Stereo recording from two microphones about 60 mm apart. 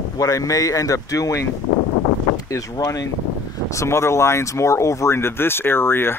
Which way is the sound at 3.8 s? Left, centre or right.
Left.